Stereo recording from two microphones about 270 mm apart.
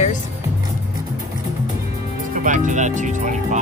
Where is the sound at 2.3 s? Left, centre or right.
Right.